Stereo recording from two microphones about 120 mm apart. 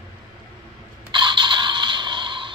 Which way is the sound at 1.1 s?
40° right (ahead or behind).